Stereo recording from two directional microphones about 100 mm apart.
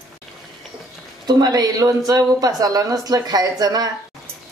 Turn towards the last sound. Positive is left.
turn(degrees=-40)  # may be behind; listen again after turning